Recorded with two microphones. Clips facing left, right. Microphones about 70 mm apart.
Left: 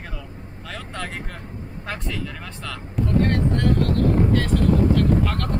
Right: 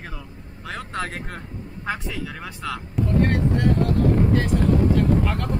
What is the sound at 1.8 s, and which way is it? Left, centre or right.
Speech, centre.